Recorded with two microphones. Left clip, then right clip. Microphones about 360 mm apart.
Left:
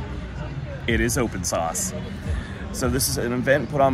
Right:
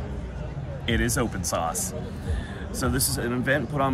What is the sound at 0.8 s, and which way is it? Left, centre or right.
Speech, centre.